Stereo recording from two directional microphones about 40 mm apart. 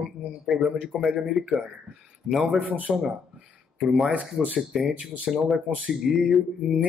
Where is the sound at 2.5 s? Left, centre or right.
Right.